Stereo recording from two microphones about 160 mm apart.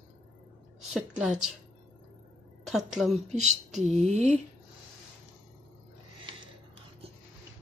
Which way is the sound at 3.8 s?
45° right (ahead or behind).